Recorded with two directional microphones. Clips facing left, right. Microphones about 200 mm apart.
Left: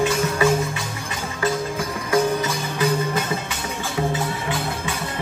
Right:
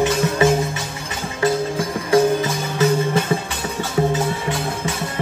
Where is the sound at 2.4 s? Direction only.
25° right (ahead or behind).